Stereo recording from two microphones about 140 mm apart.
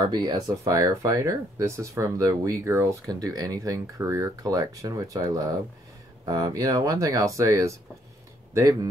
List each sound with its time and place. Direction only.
0.0 s speech: 30° right (ahead or behind)